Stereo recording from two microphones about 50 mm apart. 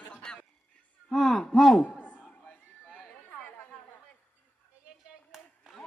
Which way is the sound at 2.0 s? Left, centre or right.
Left.